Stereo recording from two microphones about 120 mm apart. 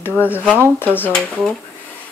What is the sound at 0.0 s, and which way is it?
Speech, 20° left (ahead or behind).